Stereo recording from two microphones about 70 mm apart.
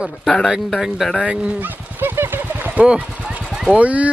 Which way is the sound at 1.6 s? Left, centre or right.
Right.